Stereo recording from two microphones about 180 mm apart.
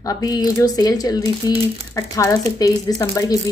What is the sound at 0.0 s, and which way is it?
A woman's voice, 20° left (ahead or behind).